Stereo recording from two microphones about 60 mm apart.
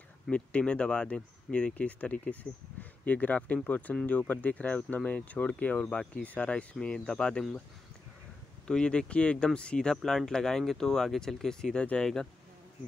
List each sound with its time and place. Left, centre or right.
0.3 s speech: left
8.6 s speech: centre